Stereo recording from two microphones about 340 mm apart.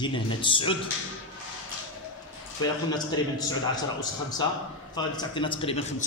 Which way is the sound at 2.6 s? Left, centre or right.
Centre.